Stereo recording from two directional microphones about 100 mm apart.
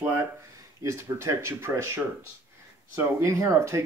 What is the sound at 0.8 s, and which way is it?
Speech, 30° right (ahead or behind).